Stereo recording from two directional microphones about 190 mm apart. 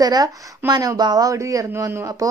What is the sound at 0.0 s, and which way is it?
A man's voice, 20° right (ahead or behind).